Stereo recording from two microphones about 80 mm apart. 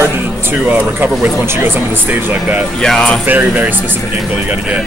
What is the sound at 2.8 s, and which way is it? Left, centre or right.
Speech, centre.